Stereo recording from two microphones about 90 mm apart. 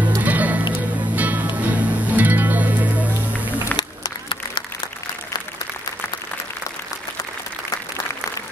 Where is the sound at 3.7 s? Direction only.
60° left (ahead or behind).